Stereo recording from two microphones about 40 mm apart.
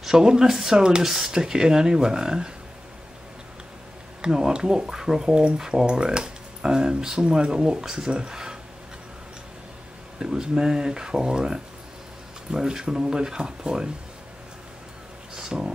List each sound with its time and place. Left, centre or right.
0.0 s speech: centre
4.2 s speech: centre
10.1 s speech: centre
15.3 s speech: centre